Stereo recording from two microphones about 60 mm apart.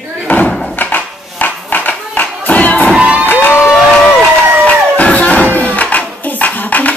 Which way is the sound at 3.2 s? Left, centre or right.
Left.